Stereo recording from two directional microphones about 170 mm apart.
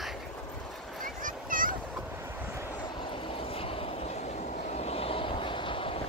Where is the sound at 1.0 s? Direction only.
55° right (ahead or behind).